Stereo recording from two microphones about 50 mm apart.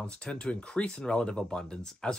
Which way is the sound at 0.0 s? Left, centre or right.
Left.